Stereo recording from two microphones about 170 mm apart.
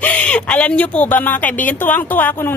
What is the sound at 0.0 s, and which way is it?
Speech, 10° left (ahead or behind).